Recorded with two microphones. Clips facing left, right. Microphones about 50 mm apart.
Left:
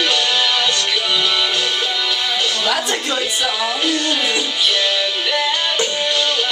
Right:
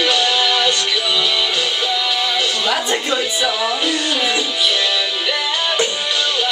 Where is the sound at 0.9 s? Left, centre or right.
Centre.